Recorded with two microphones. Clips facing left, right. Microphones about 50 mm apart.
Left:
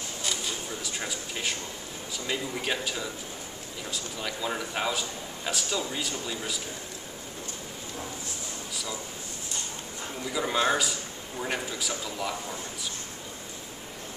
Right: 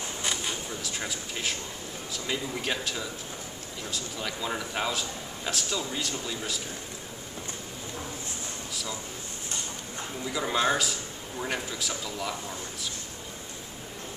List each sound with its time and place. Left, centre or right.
0.2 s a sound: right
0.8 s a man's voice: centre
10.3 s a man's voice: centre